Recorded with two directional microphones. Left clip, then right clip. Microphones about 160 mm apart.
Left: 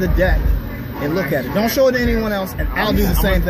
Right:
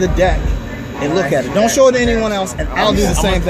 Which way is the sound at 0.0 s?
20° right (ahead or behind).